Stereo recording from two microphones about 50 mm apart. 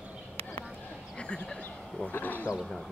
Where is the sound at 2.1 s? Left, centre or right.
Left.